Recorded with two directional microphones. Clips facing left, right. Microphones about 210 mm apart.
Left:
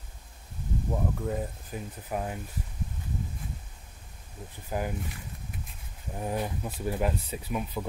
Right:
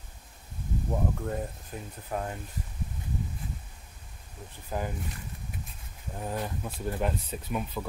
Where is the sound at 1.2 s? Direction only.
5° left (ahead or behind).